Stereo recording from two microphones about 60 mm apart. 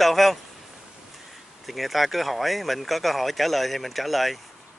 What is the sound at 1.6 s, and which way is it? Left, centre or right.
Speech, centre.